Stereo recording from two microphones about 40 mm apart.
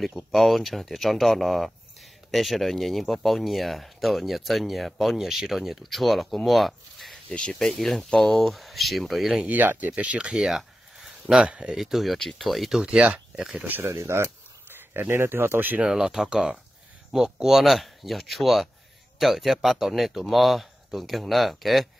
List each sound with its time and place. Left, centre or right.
0.3 s speech: centre
7.2 s speech: left
7.8 s speech: centre
9.5 s speech: right
9.9 s speech: right
10.4 s a sound: centre
11.4 s speech: right
11.8 s speech: centre
12.8 s speech: right
13.9 s speech: right
15.9 s speech: centre